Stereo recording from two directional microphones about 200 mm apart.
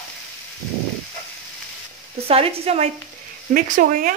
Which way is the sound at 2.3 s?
30° right (ahead or behind).